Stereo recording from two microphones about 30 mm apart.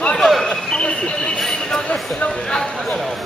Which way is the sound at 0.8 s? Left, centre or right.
Left.